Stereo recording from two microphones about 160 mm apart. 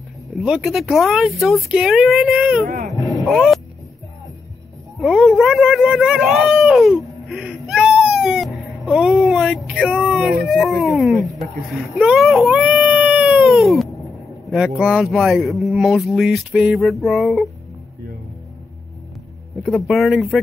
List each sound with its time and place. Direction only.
0.4 s speech: 5° right (ahead or behind)
2.6 s speech: 60° right (ahead or behind)
3.3 s speech: centre (ahead or behind)
5.0 s speech: centre (ahead or behind)
12.0 s baby cry: centre (ahead or behind)
14.5 s speech: 5° right (ahead or behind)
19.7 s speech: centre (ahead or behind)